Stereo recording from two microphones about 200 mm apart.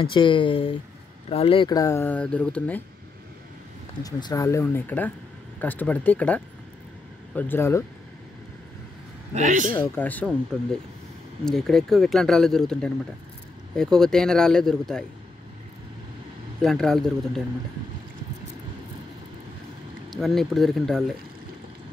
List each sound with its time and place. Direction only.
0.0 s speech: 25° left (ahead or behind); by 2.8 s 5° left (ahead or behind)
4.0 s speech: 20° left (ahead or behind)
9.3 s a man's voice: 40° right (ahead or behind)
9.8 s speech: 10° left (ahead or behind)
16.6 s speech: centre (ahead or behind)
20.1 s speech: centre (ahead or behind)